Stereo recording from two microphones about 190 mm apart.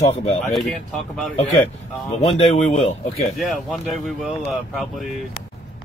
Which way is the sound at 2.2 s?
30° left (ahead or behind).